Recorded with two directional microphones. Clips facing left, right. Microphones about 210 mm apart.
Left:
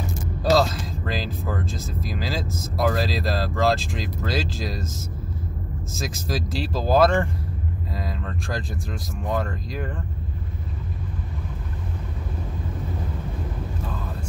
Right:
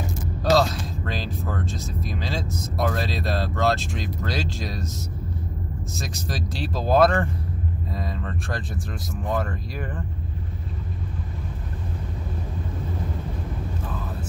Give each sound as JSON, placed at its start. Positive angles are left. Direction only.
{"t": 0.4, "sound": "a sound", "side_deg": 0}
{"t": 2.6, "sound": "speech", "side_deg": 0}
{"t": 5.9, "sound": "speech", "side_deg": 0}